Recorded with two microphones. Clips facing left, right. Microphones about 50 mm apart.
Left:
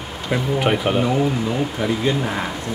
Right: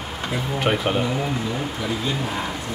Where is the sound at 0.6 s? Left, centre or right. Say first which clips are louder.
Left 1 dB; centre.